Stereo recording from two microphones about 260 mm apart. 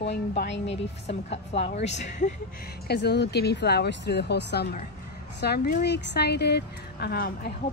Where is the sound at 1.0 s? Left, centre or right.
Left.